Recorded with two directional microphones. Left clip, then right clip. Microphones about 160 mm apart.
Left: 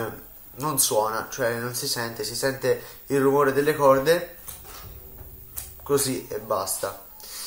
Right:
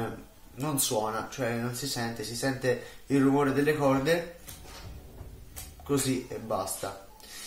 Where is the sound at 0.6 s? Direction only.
20° right (ahead or behind).